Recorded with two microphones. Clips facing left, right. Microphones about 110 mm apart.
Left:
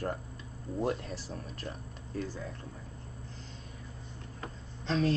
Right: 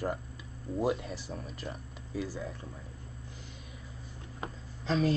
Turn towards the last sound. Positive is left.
turn(degrees=-5)  # may be behind; listen again after turning